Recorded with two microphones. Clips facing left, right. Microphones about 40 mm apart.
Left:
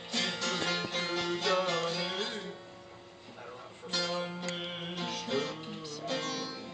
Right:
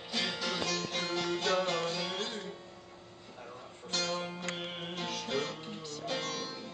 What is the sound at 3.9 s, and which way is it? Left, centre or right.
Music, centre.